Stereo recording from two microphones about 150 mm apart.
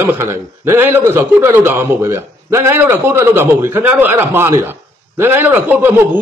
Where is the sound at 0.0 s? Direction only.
20° right (ahead or behind).